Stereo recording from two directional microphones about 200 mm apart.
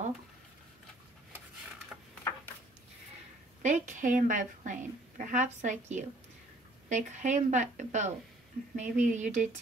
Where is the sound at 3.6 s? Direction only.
40° right (ahead or behind).